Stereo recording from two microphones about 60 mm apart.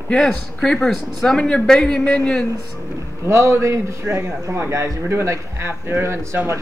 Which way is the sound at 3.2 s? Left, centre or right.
Right.